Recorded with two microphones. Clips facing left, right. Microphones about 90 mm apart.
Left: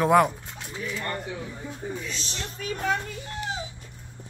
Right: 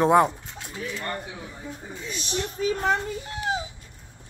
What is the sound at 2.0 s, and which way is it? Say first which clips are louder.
Speech: right 4 dB; 15° right (ahead or behind).